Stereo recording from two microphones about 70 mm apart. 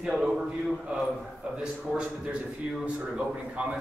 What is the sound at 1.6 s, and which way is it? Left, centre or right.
A man's voice, centre.